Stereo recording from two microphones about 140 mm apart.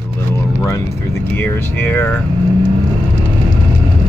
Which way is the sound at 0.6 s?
20° left (ahead or behind).